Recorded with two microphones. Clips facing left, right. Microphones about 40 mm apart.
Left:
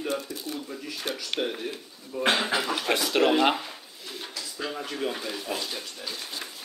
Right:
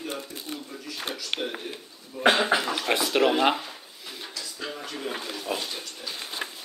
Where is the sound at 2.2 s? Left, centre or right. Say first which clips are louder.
Right 3 dB; centre.